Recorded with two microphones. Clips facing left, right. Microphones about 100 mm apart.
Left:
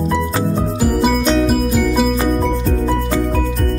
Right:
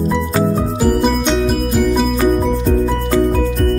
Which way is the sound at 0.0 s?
Centre (ahead or behind).